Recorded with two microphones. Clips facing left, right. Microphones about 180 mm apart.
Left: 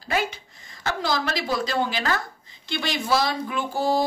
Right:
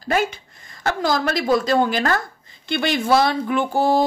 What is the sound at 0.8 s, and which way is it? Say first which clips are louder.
Speech: right 5 dB; 50° right (ahead or behind).